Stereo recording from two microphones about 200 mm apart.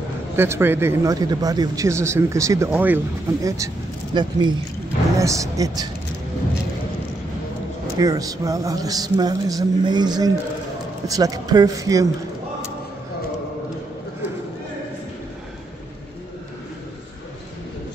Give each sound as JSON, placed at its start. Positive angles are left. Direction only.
{"t": 0.4, "sound": "speech", "side_deg": -10}
{"t": 8.0, "sound": "speech", "side_deg": -15}